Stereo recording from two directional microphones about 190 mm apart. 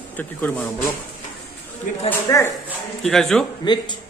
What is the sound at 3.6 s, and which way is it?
Speech, 25° left (ahead or behind).